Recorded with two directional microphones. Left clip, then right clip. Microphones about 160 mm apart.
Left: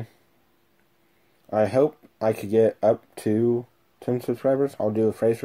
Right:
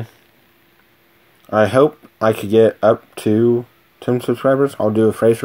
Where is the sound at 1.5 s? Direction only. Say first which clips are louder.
Right 8 dB; 5° right (ahead or behind).